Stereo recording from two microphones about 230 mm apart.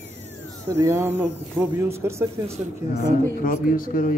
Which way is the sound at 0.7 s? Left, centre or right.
Centre.